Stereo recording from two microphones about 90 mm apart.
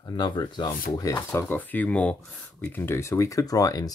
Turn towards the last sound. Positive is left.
turn(degrees=40)  # may be behind; listen again after turning